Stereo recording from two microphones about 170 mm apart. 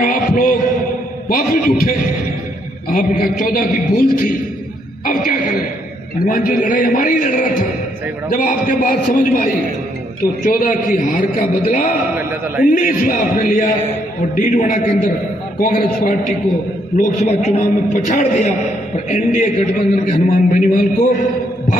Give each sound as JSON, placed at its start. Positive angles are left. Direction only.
{"t": 0.0, "sound": "a man's voice", "side_deg": 55}
{"t": 10.4, "sound": "a man's voice", "side_deg": 55}
{"t": 12.2, "sound": "a man's voice", "side_deg": -10}
{"t": 12.7, "sound": "a man's voice", "side_deg": 55}
{"t": 15.6, "sound": "a man's voice", "side_deg": 60}
{"t": 16.9, "sound": "a man's voice", "side_deg": 40}